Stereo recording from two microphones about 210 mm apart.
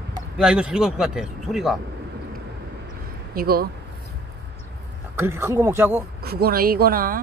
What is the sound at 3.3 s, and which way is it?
Speech, 45° right (ahead or behind).